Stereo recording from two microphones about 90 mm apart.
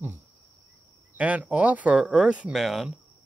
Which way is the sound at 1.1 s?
15° right (ahead or behind).